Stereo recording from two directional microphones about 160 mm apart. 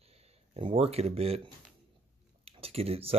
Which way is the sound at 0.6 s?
35° right (ahead or behind).